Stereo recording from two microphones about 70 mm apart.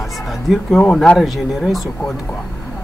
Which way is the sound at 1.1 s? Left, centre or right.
Centre.